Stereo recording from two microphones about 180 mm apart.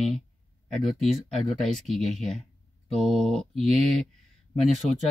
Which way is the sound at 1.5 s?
Centre (ahead or behind).